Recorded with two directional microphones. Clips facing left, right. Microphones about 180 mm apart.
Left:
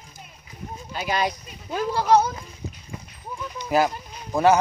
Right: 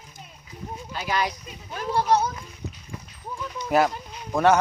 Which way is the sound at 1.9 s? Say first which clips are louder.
Left 2 dB; 90° left.